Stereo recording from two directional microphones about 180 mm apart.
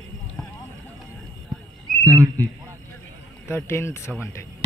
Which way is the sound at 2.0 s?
15° right (ahead or behind).